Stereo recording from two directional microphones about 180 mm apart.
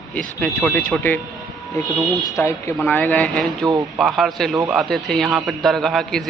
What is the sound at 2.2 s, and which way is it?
A man's voice, 15° left (ahead or behind).